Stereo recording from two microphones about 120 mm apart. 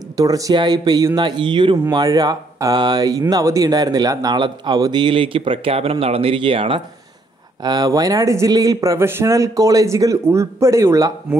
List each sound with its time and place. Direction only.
0.2 s speech: 30° right (ahead or behind); by 6.8 s 45° right (ahead or behind)
7.6 s speech: 35° right (ahead or behind)